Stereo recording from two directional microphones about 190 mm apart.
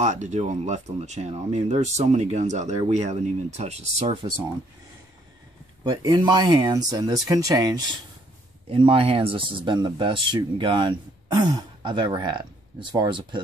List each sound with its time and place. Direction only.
0.0 s speech: 40° right (ahead or behind)
5.9 s speech: 25° right (ahead or behind)